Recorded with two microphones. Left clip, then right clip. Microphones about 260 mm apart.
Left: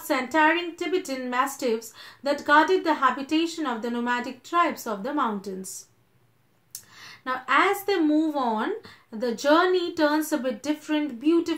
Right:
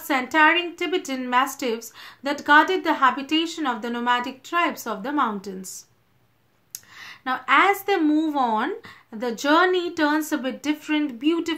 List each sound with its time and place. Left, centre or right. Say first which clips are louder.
0.0 s a woman's voice: right 3 dB; right
7.0 s a woman's voice: right 3 dB; right